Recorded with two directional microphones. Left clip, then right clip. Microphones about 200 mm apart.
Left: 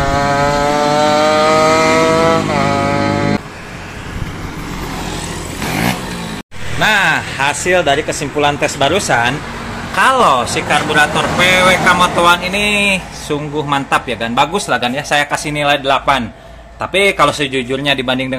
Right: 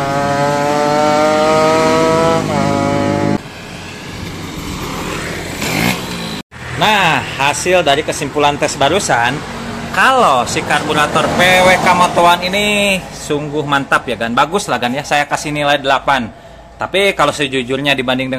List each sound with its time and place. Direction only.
0.0 s chainsaw: 10° right (ahead or behind)
6.8 s speech: 5° right (ahead or behind)